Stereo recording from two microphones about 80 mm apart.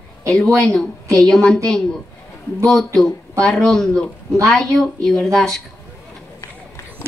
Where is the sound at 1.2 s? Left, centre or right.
Centre.